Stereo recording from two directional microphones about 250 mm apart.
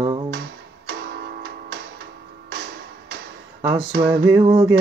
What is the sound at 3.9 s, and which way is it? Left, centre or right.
Humming, right.